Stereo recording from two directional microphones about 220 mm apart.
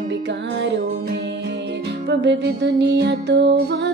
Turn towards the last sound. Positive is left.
turn(degrees=-50)  # may be behind; listen again after turning